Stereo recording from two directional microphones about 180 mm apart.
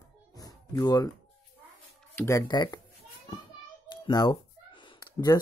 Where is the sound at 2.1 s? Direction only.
15° left (ahead or behind).